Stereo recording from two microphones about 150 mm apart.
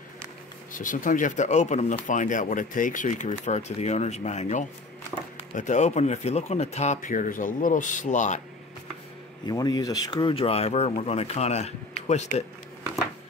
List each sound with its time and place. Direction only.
0.7 s speech: 60° left (ahead or behind)
9.5 s speech: 25° left (ahead or behind); by 12.4 s 45° left (ahead or behind)